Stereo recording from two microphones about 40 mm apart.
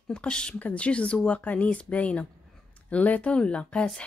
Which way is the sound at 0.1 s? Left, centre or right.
Left.